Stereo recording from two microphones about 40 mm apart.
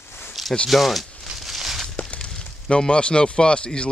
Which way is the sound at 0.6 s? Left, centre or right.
Centre.